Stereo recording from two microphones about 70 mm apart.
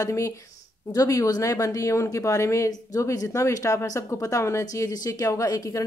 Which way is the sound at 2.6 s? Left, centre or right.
Left.